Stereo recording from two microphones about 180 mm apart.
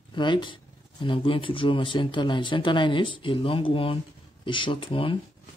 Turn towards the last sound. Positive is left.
turn(degrees=30)  # may be behind; listen again after turning